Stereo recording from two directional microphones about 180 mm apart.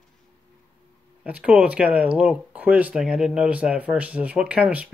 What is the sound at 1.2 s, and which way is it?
Speech, 5° right (ahead or behind).